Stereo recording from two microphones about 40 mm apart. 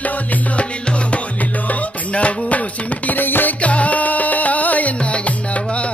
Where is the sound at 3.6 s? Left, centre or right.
Left.